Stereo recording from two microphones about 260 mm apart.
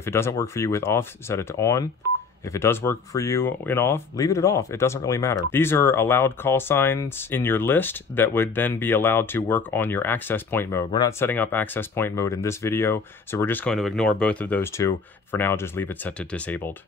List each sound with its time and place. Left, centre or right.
0.0 s speech: centre